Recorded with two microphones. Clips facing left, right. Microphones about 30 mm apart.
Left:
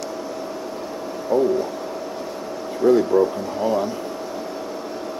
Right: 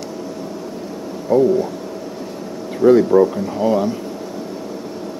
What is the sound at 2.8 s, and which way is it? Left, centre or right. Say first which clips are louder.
Speech: right 5 dB; right.